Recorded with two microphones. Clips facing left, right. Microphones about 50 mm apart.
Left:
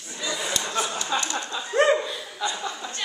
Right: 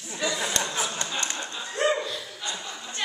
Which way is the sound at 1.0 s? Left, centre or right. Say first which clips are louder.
Left 4 dB; right.